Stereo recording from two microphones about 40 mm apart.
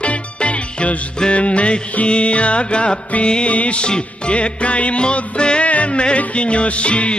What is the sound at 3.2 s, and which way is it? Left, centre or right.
Music, left.